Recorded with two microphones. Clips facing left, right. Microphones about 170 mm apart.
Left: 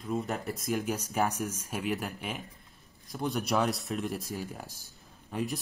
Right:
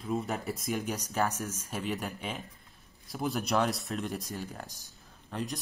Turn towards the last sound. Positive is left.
turn(degrees=0)  # may be behind; listen again after turning